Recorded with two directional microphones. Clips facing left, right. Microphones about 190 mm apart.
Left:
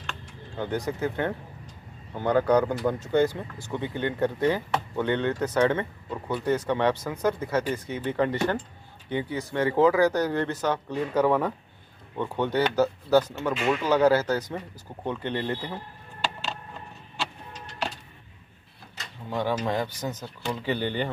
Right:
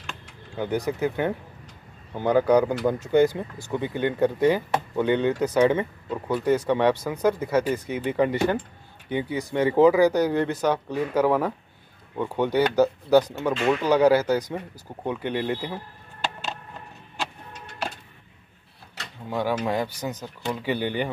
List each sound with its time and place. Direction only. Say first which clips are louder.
0.6 s speech: right 3 dB; 10° right (ahead or behind)
17.5 s vehicle: even; 55° right (ahead or behind)
19.2 s speech: right 2 dB; 10° right (ahead or behind)